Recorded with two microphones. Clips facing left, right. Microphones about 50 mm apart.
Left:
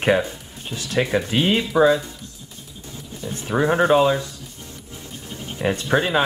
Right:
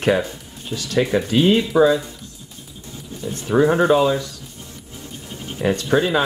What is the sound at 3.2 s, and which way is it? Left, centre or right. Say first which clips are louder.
Speech: right 3 dB; centre.